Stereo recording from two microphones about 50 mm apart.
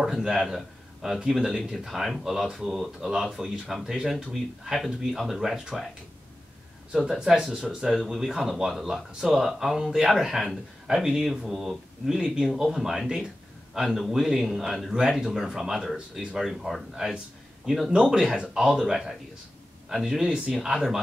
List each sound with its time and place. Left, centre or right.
0.0 s speech: centre
7.2 s speech: centre
16.9 s speech: centre
20.5 s speech: centre